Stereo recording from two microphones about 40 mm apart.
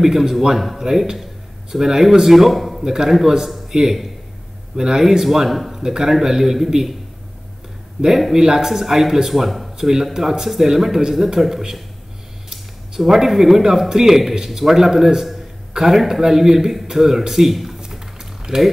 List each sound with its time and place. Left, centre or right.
0.0 s speech: centre
2.8 s speech: centre
8.4 s speech: centre
9.8 s speech: centre
17.7 s typing: centre